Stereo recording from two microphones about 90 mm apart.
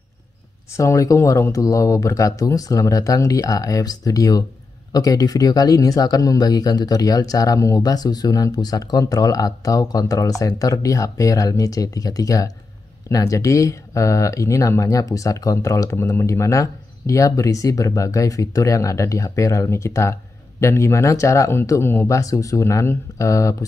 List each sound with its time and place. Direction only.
0.7 s speech: 35° left (ahead or behind)